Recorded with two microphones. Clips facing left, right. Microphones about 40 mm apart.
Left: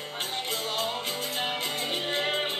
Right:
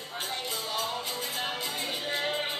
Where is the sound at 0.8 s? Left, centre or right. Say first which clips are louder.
Left 2 dB; left.